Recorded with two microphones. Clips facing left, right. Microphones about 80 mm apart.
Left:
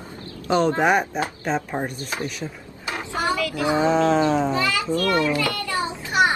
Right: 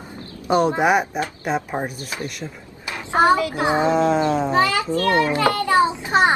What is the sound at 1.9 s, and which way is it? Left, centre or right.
Speech, left.